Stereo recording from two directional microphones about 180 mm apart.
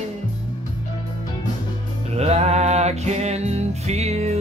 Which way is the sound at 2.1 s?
35° right (ahead or behind).